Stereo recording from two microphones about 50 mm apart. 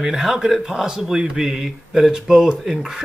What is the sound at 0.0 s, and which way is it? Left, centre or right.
A man's voice, centre.